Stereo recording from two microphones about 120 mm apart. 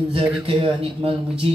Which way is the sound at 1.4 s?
50° right (ahead or behind).